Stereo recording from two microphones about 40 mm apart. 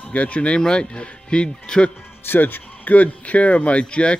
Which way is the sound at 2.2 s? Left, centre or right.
Left.